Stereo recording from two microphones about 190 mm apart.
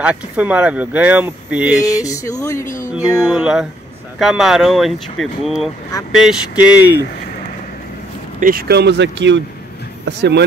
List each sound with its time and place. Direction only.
0.0 s speech: 5° right (ahead or behind)
2.0 s speech: 20° left (ahead or behind)
3.3 s speech: 5° right (ahead or behind)
8.4 s speech: 50° right (ahead or behind)